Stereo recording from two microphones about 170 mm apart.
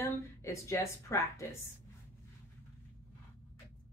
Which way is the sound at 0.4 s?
15° left (ahead or behind).